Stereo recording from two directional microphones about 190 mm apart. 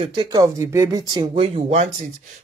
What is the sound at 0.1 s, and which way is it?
Speech, 20° right (ahead or behind).